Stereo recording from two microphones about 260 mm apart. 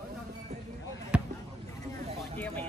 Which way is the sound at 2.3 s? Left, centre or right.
Centre.